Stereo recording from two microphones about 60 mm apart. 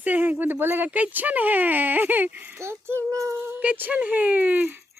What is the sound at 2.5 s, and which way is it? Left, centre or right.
Speech, right.